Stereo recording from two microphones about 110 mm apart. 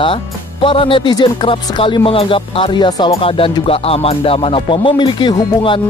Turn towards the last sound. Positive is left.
turn(degrees=50)  # may be behind; listen again after turning